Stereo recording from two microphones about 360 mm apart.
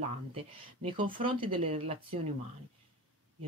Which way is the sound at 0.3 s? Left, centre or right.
Centre.